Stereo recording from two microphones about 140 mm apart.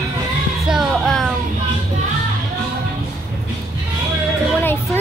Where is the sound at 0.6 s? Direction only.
Centre (ahead or behind).